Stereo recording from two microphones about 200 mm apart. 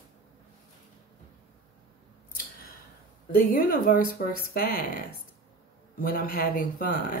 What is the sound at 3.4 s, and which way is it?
Speech, 45° left (ahead or behind).